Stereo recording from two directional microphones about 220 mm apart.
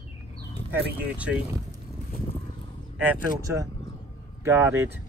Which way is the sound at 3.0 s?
10° right (ahead or behind).